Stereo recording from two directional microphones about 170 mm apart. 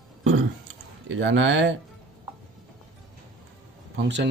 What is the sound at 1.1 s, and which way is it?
Speech, 90° right.